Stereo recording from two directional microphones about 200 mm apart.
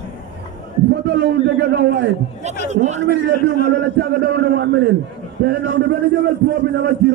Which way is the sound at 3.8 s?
50° right (ahead or behind).